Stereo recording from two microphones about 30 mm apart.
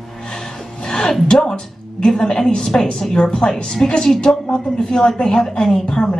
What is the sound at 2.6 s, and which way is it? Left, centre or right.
Speech, centre.